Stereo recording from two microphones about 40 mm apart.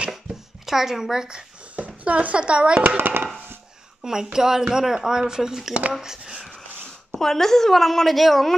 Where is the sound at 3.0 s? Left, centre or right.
Right.